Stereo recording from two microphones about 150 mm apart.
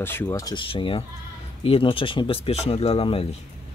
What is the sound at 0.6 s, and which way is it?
Speech, 35° left (ahead or behind).